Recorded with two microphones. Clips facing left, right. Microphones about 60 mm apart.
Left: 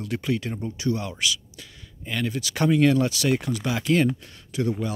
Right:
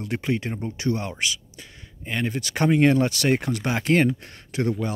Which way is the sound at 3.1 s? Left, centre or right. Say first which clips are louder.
Right 1 dB; right.